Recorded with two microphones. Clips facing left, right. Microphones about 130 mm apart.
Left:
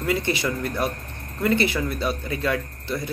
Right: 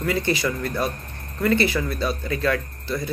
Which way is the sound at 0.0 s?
25° left (ahead or behind).